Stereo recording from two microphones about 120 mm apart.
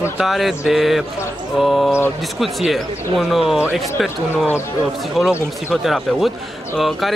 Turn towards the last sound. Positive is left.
turn(degrees=0)  # may be behind; listen again after turning